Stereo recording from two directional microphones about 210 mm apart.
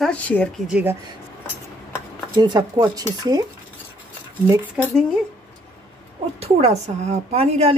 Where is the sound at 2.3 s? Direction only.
20° right (ahead or behind).